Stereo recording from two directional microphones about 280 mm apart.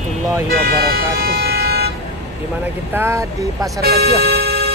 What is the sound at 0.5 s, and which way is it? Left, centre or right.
Speech, right.